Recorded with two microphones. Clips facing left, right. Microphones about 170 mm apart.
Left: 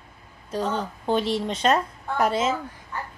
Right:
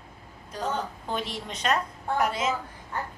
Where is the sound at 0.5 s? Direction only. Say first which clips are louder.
Left 4 dB; 30° left (ahead or behind).